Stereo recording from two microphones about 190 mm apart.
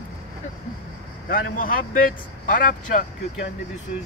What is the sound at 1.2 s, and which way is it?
Speech, 45° left (ahead or behind).